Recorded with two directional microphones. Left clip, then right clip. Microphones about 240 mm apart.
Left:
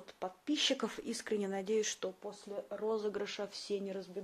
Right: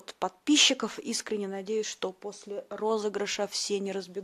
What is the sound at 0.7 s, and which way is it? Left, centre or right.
Speech, centre.